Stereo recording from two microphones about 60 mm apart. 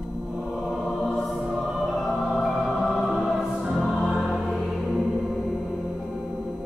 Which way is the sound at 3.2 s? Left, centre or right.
Centre.